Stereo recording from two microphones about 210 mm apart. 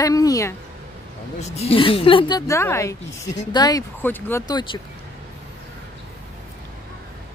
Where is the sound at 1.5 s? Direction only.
30° left (ahead or behind).